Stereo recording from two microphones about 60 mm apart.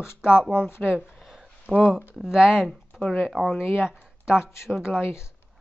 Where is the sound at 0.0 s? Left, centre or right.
Left.